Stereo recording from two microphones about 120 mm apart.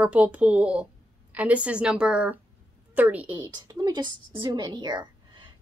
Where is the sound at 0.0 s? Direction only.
10° right (ahead or behind).